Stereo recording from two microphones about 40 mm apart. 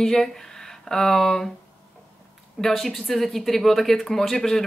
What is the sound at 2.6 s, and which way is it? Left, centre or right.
Speech, centre.